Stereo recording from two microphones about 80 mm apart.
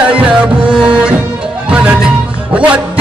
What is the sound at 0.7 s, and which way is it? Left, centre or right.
Music, centre.